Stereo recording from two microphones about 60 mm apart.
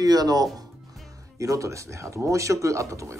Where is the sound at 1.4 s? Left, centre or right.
Right.